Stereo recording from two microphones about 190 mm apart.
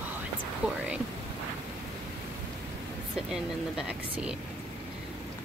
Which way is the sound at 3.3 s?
5° right (ahead or behind).